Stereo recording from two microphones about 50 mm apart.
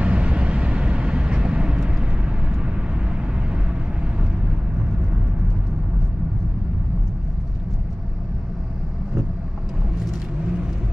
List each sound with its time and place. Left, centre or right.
0.0 s vehicle: right
10.4 s vehicle: centre